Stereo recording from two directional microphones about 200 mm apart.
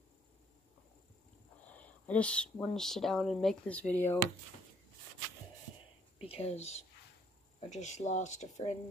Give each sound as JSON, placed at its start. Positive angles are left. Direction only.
{"t": 1.7, "sound": "speech", "side_deg": 5}
{"t": 6.1, "sound": "speech", "side_deg": 30}